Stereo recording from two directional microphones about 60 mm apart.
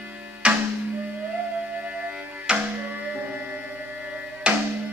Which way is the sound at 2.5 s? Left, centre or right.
Centre.